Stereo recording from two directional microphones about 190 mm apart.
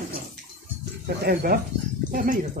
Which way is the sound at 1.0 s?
55° right (ahead or behind).